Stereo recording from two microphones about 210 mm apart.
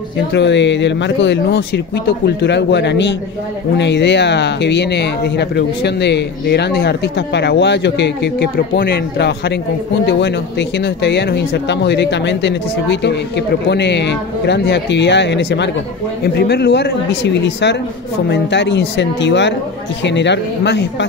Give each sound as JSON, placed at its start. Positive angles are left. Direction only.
{"t": 0.3, "sound": "speech", "side_deg": 55}
{"t": 10.8, "sound": "speech", "side_deg": 55}